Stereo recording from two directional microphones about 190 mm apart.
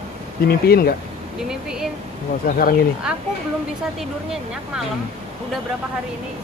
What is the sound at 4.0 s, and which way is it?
Speech, 5° right (ahead or behind).